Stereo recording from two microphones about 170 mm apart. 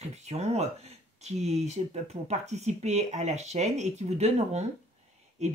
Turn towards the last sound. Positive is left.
turn(degrees=-40)  # may be behind; listen again after turning